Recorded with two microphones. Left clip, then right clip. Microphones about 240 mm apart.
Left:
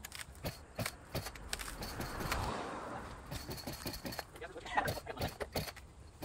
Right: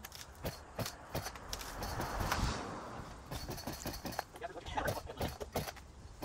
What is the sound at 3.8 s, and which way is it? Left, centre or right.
Vehicle, centre.